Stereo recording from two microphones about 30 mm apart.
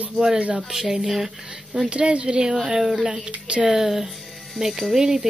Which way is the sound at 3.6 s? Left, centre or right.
Centre.